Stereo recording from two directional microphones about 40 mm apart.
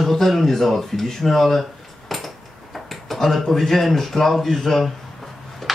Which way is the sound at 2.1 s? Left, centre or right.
Centre.